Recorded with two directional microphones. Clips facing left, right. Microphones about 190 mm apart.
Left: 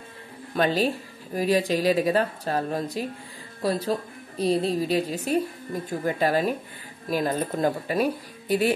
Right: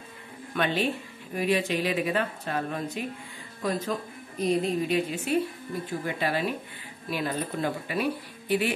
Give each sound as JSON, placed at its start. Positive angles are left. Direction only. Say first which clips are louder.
{"t": 0.6, "sound": "speech", "louder": "left 4 dB", "side_deg": 35}